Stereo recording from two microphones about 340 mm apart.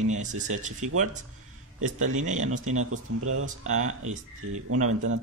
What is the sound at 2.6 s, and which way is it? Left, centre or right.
Speech, right.